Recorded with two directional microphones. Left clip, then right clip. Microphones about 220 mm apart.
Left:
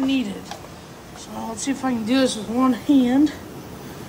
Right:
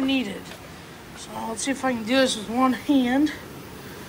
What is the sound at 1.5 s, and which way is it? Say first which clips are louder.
Speech: left 1 dB; 10° left (ahead or behind).